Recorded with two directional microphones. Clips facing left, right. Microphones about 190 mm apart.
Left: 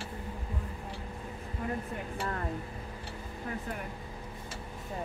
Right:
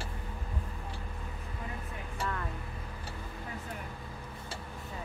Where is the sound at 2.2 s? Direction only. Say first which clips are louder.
Even; 35° left (ahead or behind).